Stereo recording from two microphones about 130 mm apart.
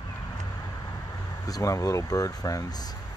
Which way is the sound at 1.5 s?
25° left (ahead or behind).